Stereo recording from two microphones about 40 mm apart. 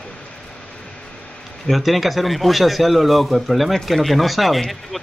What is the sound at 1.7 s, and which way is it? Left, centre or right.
Speech, centre.